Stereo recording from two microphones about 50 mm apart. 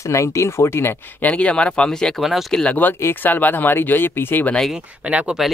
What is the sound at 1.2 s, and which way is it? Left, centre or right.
Speech, left.